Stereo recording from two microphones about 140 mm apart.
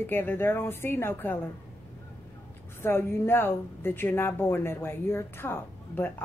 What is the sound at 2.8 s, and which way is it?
Speech, 15° left (ahead or behind).